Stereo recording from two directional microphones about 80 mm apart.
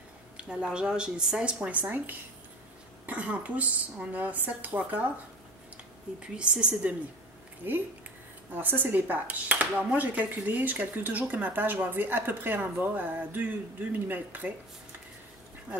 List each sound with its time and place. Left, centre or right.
0.4 s speech: centre
6.1 s speech: centre
7.6 s speech: right